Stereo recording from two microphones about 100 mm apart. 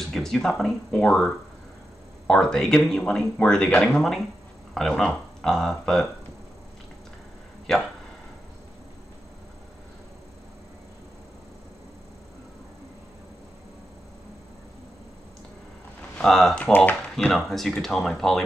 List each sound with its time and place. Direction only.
0.1 s speech: 5° left (ahead or behind)
7.7 s speech: 5° left (ahead or behind)
16.2 s speech: 5° left (ahead or behind)